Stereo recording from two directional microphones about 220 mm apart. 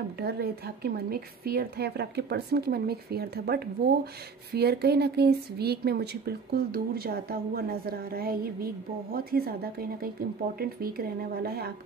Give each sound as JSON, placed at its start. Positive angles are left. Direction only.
{"t": 0.2, "sound": "speech", "side_deg": -45}